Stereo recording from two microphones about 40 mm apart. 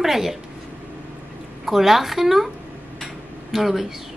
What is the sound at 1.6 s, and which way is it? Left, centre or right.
Speech, centre.